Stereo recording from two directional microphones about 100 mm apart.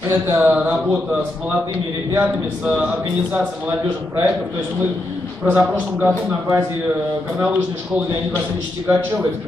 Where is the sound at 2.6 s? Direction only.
15° right (ahead or behind).